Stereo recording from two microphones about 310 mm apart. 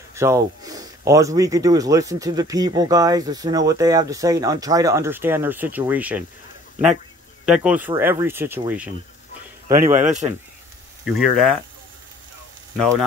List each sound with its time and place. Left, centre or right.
0.1 s speech: centre
7.4 s speech: centre
9.7 s a man's voice: right
11.1 s speech: centre